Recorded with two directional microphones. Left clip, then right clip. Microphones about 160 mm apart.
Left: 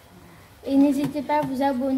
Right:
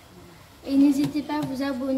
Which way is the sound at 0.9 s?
55° left (ahead or behind).